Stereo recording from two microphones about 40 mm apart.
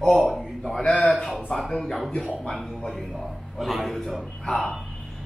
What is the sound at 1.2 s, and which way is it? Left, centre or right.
Speech, centre.